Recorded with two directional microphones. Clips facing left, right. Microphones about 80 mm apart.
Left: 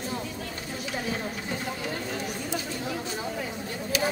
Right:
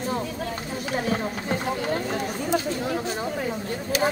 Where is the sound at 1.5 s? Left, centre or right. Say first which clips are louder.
Right 9 dB; right.